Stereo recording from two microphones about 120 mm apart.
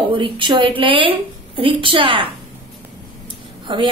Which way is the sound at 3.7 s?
45° right (ahead or behind).